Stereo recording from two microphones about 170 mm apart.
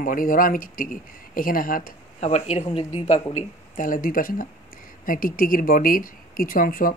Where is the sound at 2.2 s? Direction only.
40° left (ahead or behind).